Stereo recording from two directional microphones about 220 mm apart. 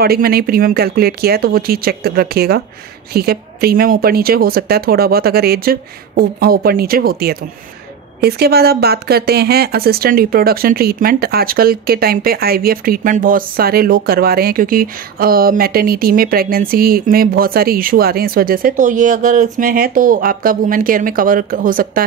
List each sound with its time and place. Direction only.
0.0 s speech: 45° right (ahead or behind)